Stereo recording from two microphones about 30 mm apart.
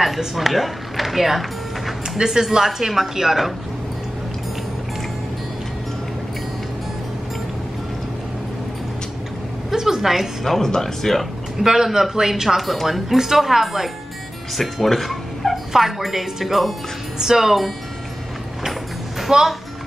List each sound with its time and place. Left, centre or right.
0.5 s speech: centre
2.1 s speech: centre
9.7 s a sound: centre
10.4 s speech: centre
11.6 s speech: centre
14.6 s speech: centre
15.7 s speech: centre
17.2 s speech: centre
17.5 s speech: centre
19.2 s speech: centre